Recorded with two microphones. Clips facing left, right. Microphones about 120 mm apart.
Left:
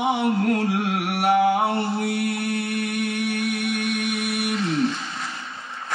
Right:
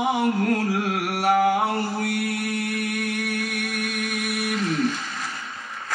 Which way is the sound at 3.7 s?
25° left (ahead or behind).